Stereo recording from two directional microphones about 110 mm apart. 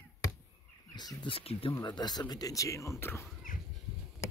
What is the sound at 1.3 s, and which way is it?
Speech, 60° left (ahead or behind).